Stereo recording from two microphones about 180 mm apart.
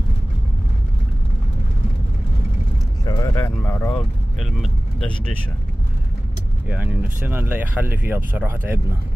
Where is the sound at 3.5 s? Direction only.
10° left (ahead or behind).